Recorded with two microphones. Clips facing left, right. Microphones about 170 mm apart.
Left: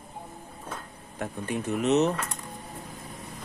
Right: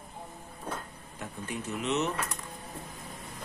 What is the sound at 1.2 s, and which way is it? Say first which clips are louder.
Speech: left 6 dB; 50° left (ahead or behind).